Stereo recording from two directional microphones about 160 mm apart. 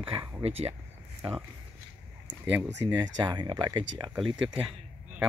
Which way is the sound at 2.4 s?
10° right (ahead or behind).